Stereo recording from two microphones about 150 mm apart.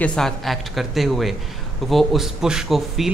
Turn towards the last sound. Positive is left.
turn(degrees=-5)  # may be behind; listen again after turning